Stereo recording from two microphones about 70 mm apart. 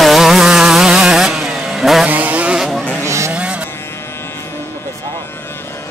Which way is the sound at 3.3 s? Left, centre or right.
Centre.